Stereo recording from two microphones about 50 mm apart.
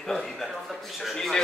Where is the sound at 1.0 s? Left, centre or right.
Centre.